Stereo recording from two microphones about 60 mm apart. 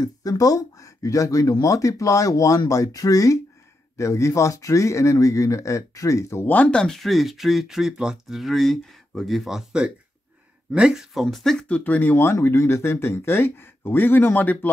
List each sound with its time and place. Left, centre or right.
0.0 s speech: left
4.0 s speech: left
6.4 s speech: left
6.8 s speech: centre
11.7 s speech: left